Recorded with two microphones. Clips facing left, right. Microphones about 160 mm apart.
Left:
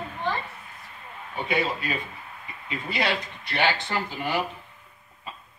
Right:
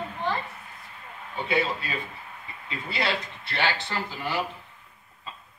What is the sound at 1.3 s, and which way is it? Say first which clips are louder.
Speech: even; 15° left (ahead or behind).